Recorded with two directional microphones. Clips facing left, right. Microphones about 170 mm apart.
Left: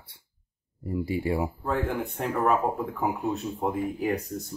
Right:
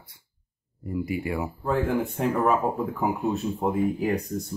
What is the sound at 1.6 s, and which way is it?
Speech, centre (ahead or behind).